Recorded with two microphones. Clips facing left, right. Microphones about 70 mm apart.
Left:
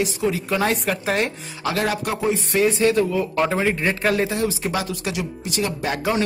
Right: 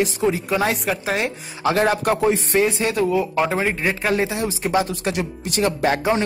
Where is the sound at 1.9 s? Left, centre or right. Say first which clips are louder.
Right 4 dB; right.